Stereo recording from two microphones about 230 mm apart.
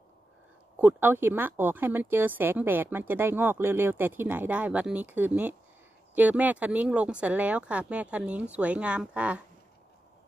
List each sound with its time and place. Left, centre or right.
0.7 s speech: centre